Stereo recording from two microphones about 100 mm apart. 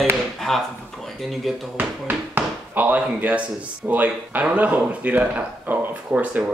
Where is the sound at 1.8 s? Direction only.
20° right (ahead or behind).